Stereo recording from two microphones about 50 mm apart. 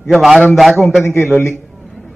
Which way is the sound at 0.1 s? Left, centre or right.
Centre.